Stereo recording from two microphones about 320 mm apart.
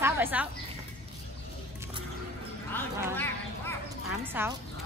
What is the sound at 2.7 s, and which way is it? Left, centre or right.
Clip-clop, centre.